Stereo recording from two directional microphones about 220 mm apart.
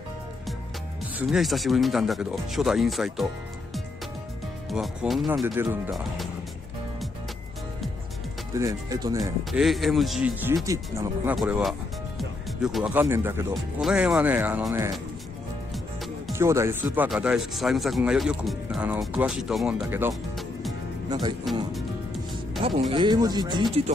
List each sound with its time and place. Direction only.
1.1 s speech: centre (ahead or behind)
4.6 s speech: centre (ahead or behind)
5.3 s speech: 10° right (ahead or behind)
8.5 s speech: 15° right (ahead or behind)
9.4 s speech: centre (ahead or behind)
10.5 s speech: 15° right (ahead or behind)
11.3 s speech: 5° right (ahead or behind)
16.3 s speech: 10° right (ahead or behind)
21.7 s music: centre (ahead or behind)
22.6 s speech: 25° right (ahead or behind)